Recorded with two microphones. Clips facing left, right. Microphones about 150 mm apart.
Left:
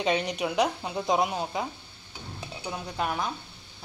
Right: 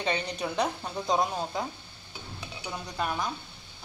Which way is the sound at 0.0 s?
10° left (ahead or behind).